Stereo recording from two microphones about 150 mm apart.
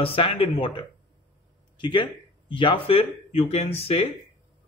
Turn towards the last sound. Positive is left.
turn(degrees=45)  # may be behind; listen again after turning